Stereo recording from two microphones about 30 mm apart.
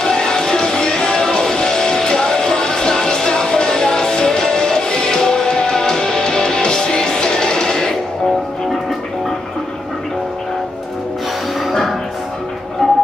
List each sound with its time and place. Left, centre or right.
0.0 s music: left
12.8 s music: centre